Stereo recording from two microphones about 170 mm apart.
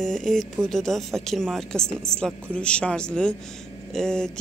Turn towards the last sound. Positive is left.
turn(degrees=5)  # may be behind; listen again after turning